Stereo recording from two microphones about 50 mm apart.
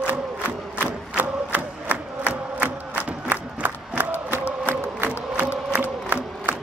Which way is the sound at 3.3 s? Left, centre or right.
Right.